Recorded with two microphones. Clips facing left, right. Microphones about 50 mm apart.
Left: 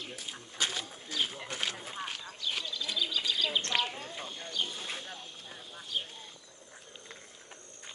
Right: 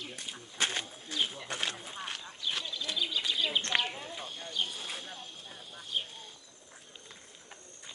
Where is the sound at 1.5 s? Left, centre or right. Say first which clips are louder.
Even; right.